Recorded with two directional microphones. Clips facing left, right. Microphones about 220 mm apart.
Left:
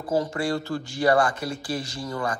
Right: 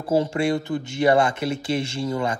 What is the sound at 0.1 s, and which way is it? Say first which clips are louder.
Speech: right 4 dB; 25° right (ahead or behind).